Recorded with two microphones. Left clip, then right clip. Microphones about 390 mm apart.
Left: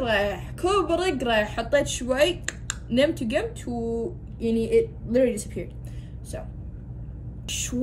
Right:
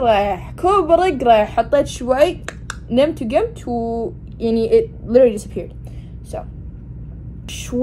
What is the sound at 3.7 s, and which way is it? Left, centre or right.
Speech, right.